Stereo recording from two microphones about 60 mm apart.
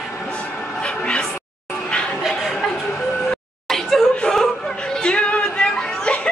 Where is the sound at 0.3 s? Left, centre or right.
Centre.